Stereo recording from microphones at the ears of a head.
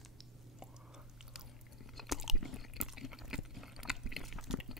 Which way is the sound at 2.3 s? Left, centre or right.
Left.